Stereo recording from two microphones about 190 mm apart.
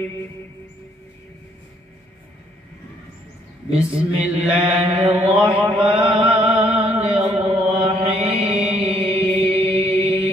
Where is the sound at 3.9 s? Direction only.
5° right (ahead or behind).